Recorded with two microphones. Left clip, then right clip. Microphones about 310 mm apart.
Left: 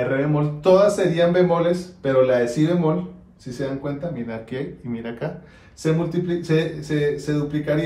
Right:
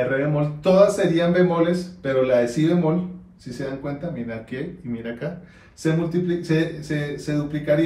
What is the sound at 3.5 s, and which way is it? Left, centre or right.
Speech, centre.